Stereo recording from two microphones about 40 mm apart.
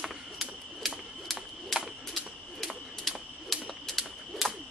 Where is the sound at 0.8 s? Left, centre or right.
Centre.